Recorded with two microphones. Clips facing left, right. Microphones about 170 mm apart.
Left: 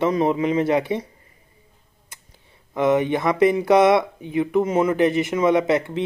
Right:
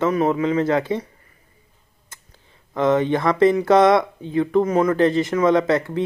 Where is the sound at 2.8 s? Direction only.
15° left (ahead or behind).